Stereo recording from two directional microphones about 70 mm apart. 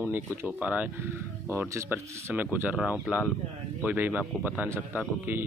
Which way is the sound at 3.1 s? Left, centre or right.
Centre.